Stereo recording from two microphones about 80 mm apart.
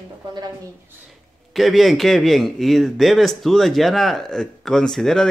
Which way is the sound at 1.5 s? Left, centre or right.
Centre.